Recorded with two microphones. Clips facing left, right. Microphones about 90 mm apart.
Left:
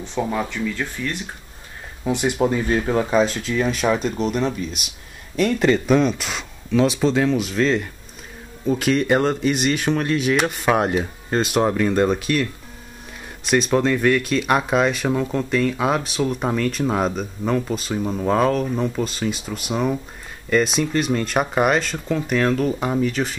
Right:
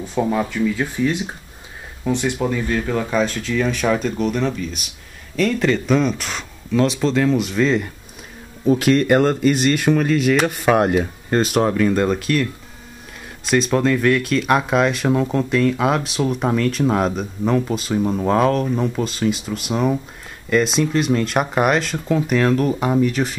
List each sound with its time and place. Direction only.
0.0 s speech: 5° right (ahead or behind)
2.0 s speech: 10° left (ahead or behind)
3.4 s speech: 5° left (ahead or behind)
5.4 s speech: 5° left (ahead or behind)
13.5 s speech: centre (ahead or behind)